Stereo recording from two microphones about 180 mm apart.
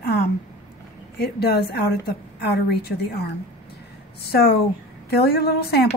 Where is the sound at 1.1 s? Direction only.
60° left (ahead or behind).